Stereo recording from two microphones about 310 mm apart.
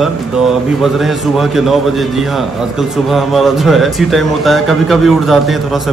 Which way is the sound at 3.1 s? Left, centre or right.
Centre.